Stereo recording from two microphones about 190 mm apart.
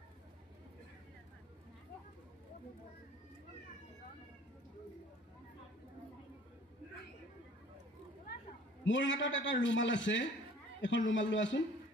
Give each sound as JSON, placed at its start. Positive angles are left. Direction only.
{"t": 8.8, "sound": "a man's voice", "side_deg": 75}